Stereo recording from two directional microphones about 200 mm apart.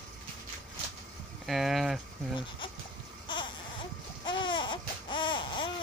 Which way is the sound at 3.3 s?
25° left (ahead or behind).